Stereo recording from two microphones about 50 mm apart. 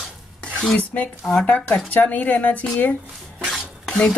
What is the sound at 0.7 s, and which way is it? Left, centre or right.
A woman's voice, left.